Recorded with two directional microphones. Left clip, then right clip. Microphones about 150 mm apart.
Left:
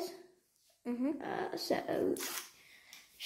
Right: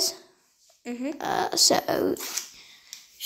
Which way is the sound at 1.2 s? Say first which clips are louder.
Right 15 dB; 50° right (ahead or behind).